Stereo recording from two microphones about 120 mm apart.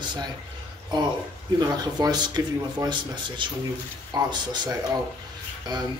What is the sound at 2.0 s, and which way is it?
Speech, 35° right (ahead or behind).